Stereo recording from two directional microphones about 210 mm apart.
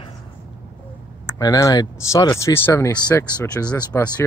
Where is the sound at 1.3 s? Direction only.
15° left (ahead or behind).